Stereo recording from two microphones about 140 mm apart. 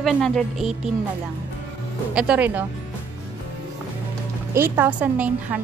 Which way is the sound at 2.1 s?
10° right (ahead or behind).